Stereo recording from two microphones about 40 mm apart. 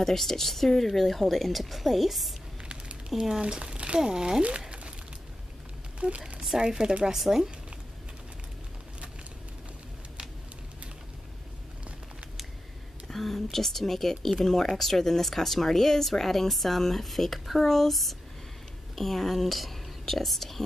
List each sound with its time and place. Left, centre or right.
0.0 s speech: centre
3.1 s speech: centre
3.7 s a sound: right
4.0 s speech: centre
4.4 s a sound: right
5.9 s a sound: right
6.5 s speech: centre
7.2 s speech: centre
13.1 s speech: centre